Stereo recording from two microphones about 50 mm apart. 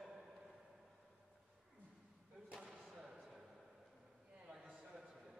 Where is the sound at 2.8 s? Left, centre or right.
Centre.